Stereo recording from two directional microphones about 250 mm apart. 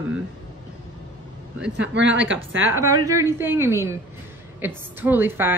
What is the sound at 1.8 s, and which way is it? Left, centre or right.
Speech, right.